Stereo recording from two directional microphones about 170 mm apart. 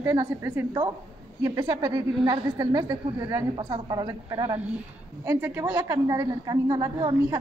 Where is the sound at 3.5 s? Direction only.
30° right (ahead or behind).